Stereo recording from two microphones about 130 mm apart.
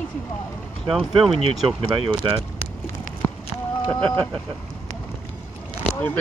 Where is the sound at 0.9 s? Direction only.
Centre (ahead or behind).